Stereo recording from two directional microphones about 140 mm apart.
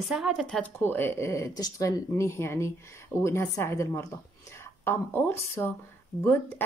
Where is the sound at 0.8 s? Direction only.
15° left (ahead or behind).